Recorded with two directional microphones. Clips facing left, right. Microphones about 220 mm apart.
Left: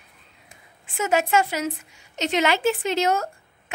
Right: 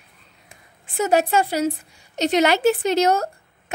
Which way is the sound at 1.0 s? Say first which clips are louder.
Right 3 dB; 35° right (ahead or behind).